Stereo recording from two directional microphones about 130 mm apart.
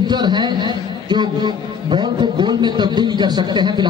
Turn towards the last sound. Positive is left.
turn(degrees=-35)  # may be behind; listen again after turning